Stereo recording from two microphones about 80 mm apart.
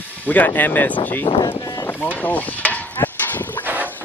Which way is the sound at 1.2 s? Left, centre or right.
Left.